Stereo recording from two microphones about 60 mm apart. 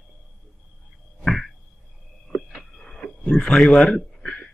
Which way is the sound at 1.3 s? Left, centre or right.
Centre.